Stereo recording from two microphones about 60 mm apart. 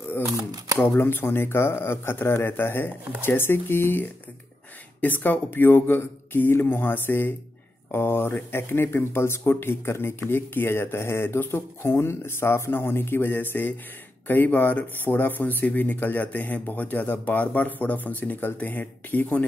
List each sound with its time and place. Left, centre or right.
0.3 s speech: right
0.7 s speech: left